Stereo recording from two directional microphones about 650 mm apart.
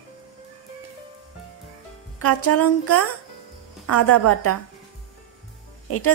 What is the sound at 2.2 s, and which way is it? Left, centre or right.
A woman's voice, left.